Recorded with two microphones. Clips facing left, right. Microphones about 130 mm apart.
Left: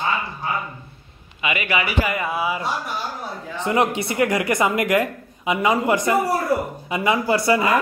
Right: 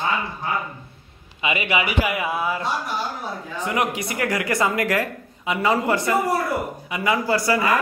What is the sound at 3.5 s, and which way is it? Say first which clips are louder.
A woman's voice: left 4 dB; 25° left (ahead or behind).